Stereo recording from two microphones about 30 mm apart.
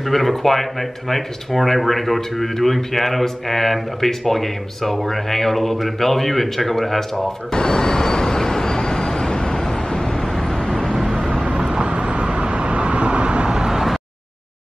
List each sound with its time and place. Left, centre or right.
0.1 s speech: centre
7.5 s vehicle: left
11.8 s vehicle: right
13.5 s vehicle: right